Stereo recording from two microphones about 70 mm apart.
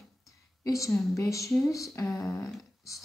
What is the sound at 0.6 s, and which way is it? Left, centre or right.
Speech, left.